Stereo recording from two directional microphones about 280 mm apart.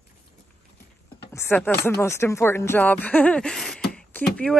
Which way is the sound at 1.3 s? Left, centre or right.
Centre.